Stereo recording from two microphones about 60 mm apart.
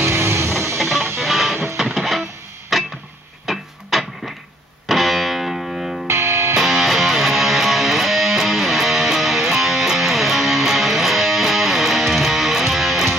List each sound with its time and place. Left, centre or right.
0.0 s music: right
0.7 s music: centre
2.7 s a sound: centre
3.5 s music: centre
3.9 s a sound: centre
4.8 s music: centre
6.0 s music: right
6.5 s music: centre